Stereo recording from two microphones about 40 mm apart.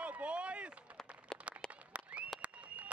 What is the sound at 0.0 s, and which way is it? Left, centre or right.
Chop, right.